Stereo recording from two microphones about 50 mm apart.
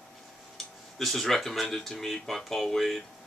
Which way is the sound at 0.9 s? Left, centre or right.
Centre.